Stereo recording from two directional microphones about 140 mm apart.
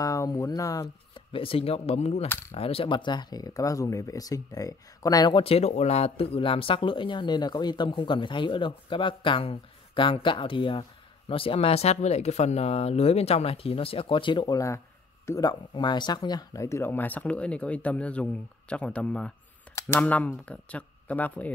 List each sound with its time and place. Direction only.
0.0 s speech: 25° left (ahead or behind)
1.3 s speech: 40° left (ahead or behind)
2.2 s speech: 15° left (ahead or behind)
2.5 s speech: 45° left (ahead or behind); by 5.4 s 25° left (ahead or behind)
5.4 s speech: 45° left (ahead or behind)
15.2 s speech: 25° left (ahead or behind)